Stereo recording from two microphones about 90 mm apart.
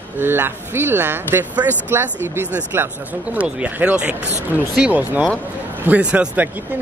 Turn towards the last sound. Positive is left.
turn(degrees=-15)  # may be behind; listen again after turning